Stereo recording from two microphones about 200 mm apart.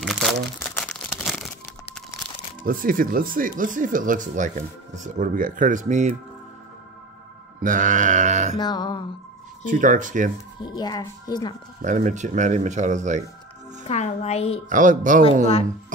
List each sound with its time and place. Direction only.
0.0 s crumpling: centre (ahead or behind)
2.6 s speech: 45° right (ahead or behind)
7.6 s speech: 40° right (ahead or behind)
8.5 s speech: 20° left (ahead or behind)
9.7 s speech: 40° right (ahead or behind)
10.6 s speech: 20° left (ahead or behind)
11.8 s speech: 40° right (ahead or behind)
13.8 s a woman's voice: 35° left (ahead or behind)
14.7 s speech: 40° right (ahead or behind)